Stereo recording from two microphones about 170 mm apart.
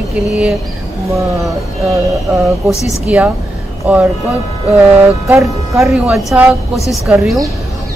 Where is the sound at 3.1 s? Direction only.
5° right (ahead or behind).